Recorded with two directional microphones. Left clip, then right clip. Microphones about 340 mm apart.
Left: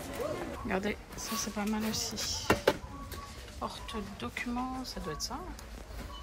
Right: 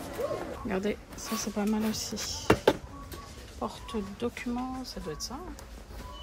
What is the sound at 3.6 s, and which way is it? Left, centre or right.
Speech, centre.